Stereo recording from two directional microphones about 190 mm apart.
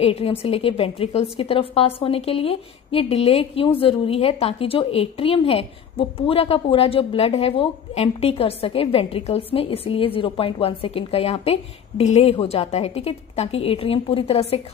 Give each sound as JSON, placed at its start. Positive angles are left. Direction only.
{"t": 0.0, "sound": "a woman's voice", "side_deg": 30}